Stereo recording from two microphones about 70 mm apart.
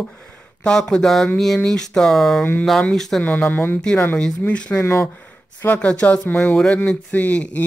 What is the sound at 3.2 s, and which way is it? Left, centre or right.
Speech, left.